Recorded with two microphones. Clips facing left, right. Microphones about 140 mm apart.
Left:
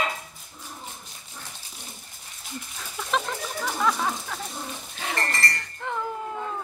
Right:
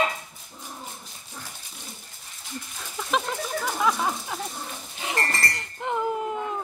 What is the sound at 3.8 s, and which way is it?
Speech, 10° right (ahead or behind).